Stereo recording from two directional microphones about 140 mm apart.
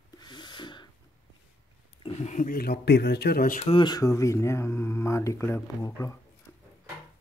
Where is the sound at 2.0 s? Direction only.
50° left (ahead or behind); by 3.6 s 90° left.